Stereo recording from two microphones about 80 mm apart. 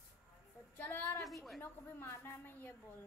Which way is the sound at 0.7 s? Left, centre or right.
Left.